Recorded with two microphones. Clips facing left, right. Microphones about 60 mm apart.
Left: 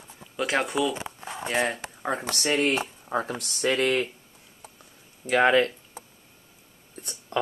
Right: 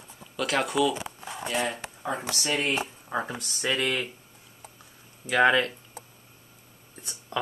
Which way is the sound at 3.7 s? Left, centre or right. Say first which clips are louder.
Left 3 dB; left.